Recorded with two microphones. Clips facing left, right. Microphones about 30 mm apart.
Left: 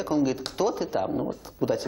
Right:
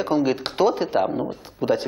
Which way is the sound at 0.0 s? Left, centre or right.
Right.